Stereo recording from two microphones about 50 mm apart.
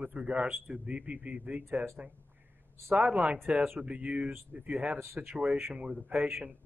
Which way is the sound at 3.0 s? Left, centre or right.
Right.